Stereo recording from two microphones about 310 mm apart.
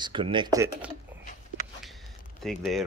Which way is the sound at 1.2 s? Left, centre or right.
Left.